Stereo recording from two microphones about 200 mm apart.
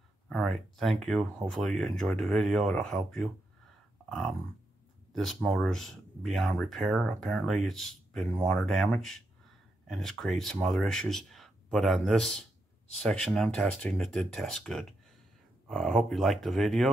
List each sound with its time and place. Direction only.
0.3 s speech: centre (ahead or behind)